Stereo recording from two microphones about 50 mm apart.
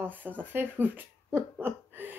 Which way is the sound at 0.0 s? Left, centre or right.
Right.